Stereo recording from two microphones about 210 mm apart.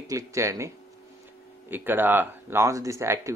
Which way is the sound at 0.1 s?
15° right (ahead or behind).